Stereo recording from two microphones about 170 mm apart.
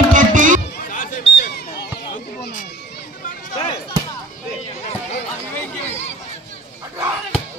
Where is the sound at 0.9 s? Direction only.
55° left (ahead or behind).